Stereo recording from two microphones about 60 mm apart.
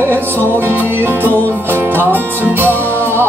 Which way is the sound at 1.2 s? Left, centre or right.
Left.